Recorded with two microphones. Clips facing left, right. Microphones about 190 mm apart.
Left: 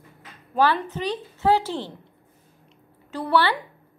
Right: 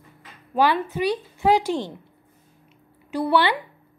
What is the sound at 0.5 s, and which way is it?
A woman's voice, 15° right (ahead or behind).